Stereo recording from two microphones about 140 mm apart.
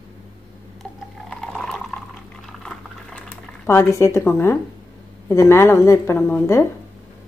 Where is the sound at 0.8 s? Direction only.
5° left (ahead or behind).